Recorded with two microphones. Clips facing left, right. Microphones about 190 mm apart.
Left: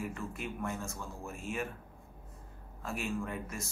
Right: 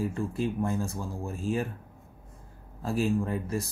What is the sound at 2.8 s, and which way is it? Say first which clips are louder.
Speech: right 9 dB; 35° right (ahead or behind).